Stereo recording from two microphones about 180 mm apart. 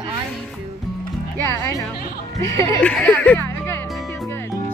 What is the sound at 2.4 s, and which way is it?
Speech, 15° left (ahead or behind).